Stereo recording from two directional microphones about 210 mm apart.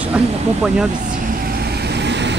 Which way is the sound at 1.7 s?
50° right (ahead or behind).